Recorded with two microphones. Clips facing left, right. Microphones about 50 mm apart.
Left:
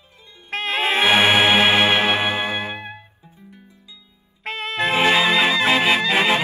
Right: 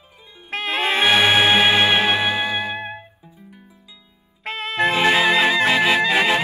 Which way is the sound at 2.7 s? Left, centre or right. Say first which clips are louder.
Right 4 dB; right.